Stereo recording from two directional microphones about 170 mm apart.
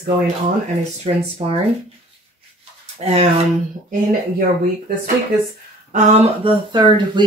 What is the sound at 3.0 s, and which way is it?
Speech, 40° right (ahead or behind).